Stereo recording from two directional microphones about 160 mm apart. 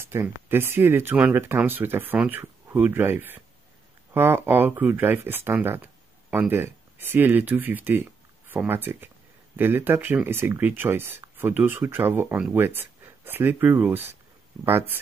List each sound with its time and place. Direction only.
0.0 s speech: 15° right (ahead or behind)